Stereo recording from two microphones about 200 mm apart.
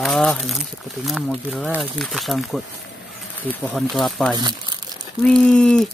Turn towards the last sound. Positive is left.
turn(degrees=5)  # may be behind; listen again after turning